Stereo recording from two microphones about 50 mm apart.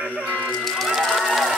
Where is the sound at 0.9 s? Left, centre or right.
Centre.